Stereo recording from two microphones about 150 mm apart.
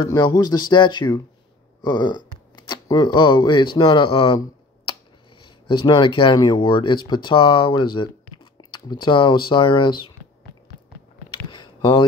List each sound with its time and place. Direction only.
0.0 s speech: 30° left (ahead or behind)
5.4 s speech: 35° left (ahead or behind)
11.5 s a sound: 35° left (ahead or behind)